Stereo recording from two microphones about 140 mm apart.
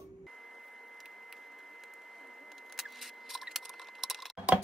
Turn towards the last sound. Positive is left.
turn(degrees=-5)  # may be behind; listen again after turning